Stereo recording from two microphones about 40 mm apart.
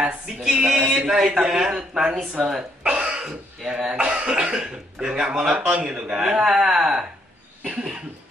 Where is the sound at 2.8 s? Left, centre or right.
Right.